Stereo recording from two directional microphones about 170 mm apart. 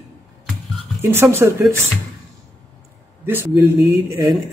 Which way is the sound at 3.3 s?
15° right (ahead or behind).